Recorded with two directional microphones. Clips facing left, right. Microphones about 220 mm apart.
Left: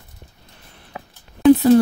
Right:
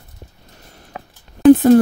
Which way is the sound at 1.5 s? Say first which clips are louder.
Right 1 dB; 50° right (ahead or behind).